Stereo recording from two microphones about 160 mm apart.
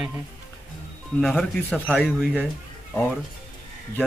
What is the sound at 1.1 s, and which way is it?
Speech, 5° left (ahead or behind).